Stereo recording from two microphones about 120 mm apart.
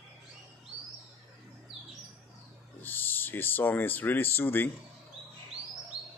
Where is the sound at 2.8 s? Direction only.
15° left (ahead or behind).